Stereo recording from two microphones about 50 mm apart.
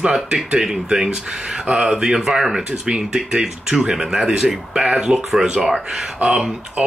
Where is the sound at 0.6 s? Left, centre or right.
Centre.